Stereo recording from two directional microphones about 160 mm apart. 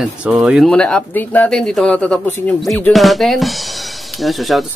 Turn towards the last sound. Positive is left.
turn(degrees=0)  # may be behind; listen again after turning